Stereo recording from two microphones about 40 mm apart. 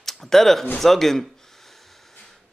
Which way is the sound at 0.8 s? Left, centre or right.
Centre.